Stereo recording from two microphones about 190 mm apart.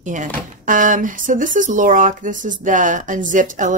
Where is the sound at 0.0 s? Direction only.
40° right (ahead or behind).